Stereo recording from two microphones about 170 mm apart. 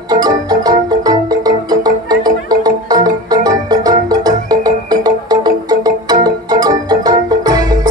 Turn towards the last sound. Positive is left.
turn(degrees=-20)  # may be behind; listen again after turning